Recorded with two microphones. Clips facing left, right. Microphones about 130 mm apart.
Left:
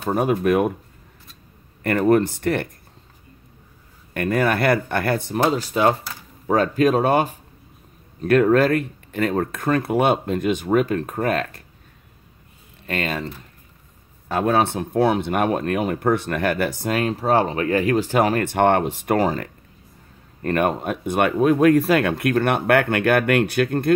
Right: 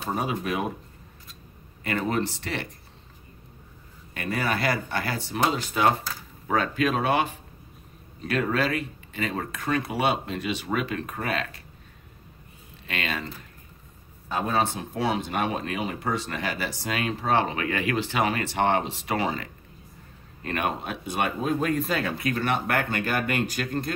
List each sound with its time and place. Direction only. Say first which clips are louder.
0.1 s speech: left 9 dB; 55° left (ahead or behind)
1.8 s speech: left 10 dB; 55° left (ahead or behind)
4.1 s speech: left 8 dB; 55° left (ahead or behind)
8.2 s speech: left 10 dB; 50° left (ahead or behind)
12.8 s speech: left 6 dB; 45° left (ahead or behind)
14.3 s speech: left 6 dB; 60° left (ahead or behind)